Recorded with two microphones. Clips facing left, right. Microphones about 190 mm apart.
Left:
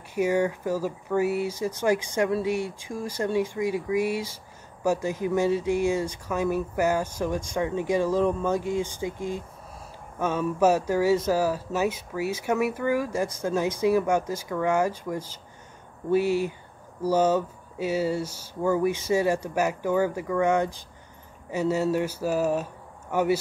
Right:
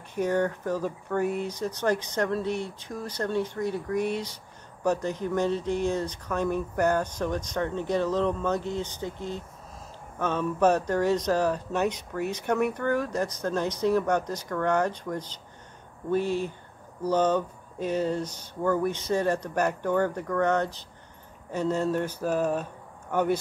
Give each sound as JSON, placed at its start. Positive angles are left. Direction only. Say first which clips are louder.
{"t": 0.1, "sound": "speech", "louder": "left 2 dB", "side_deg": 10}